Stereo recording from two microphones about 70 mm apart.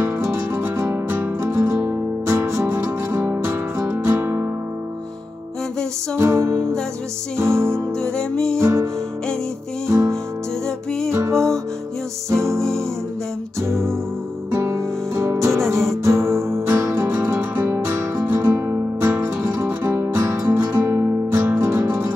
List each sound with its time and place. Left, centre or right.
0.0 s music: right
6.1 s music: right
6.5 s music: centre
7.3 s music: right
8.0 s music: centre
8.5 s music: right
9.8 s music: right
12.5 s music: centre
13.6 s music: right
17.4 s music: right